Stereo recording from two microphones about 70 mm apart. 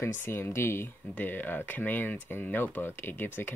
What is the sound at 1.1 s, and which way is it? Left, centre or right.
Speech, left.